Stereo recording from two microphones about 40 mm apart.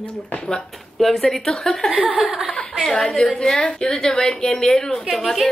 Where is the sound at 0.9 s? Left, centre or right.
Centre.